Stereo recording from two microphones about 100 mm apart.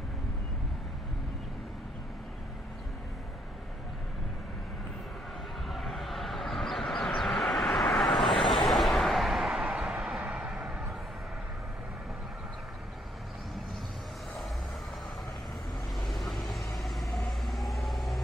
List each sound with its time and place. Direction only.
5.7 s a sound: centre (ahead or behind)
7.2 s vehicle: 5° left (ahead or behind)
16.0 s vehicle: centre (ahead or behind)